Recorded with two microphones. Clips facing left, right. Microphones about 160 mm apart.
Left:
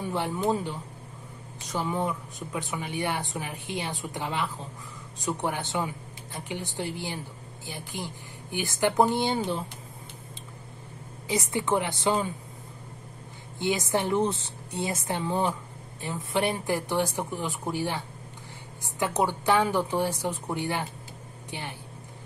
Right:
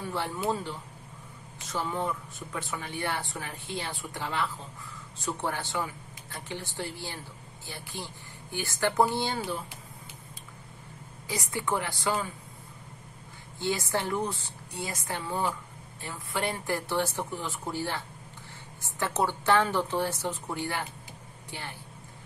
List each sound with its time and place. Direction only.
0.0 s a sound: 20° left (ahead or behind)
1.6 s a woman's voice: 15° left (ahead or behind)
11.2 s a woman's voice: 20° left (ahead or behind)
13.6 s a woman's voice: 20° left (ahead or behind)